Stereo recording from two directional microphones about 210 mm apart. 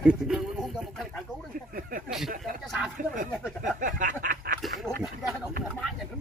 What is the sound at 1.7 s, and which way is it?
Speech, 40° right (ahead or behind).